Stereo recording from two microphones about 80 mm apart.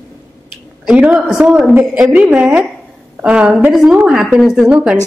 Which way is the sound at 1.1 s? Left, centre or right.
Centre.